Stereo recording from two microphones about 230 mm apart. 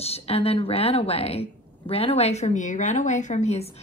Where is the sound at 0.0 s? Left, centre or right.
Left.